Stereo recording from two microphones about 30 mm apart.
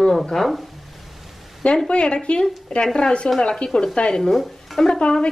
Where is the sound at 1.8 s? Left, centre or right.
Left.